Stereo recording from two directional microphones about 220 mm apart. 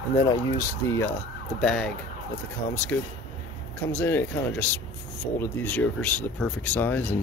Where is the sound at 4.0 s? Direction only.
10° left (ahead or behind).